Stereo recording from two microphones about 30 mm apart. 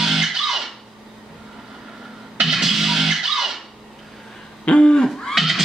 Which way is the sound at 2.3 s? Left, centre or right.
Centre.